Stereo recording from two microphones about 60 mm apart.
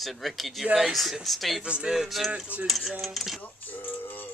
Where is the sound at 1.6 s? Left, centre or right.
Centre.